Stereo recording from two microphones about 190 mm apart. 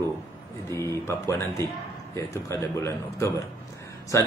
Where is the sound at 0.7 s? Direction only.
15° left (ahead or behind).